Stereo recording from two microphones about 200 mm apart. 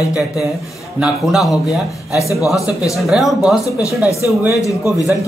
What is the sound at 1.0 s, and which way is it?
Speech, 5° right (ahead or behind).